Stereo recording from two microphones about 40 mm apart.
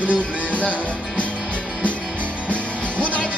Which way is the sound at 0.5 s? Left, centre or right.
Left.